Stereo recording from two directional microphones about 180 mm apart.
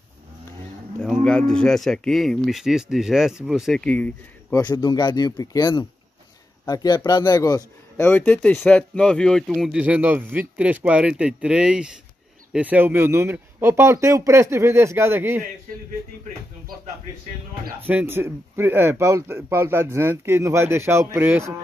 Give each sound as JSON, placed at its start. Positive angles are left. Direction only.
{"t": 1.2, "sound": "speech", "side_deg": 5}
{"t": 4.6, "sound": "a man's voice", "side_deg": 20}
{"t": 8.1, "sound": "a man's voice", "side_deg": 10}
{"t": 17.8, "sound": "a man's voice", "side_deg": -10}